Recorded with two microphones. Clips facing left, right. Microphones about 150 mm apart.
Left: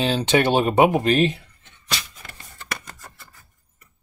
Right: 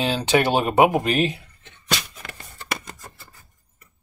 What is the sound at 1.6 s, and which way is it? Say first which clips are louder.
Music: right 4 dB; 65° right (ahead or behind).